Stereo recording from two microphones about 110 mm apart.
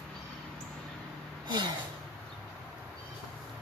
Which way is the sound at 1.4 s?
40° right (ahead or behind).